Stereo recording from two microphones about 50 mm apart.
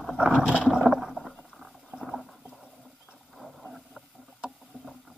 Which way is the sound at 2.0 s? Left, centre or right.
Centre.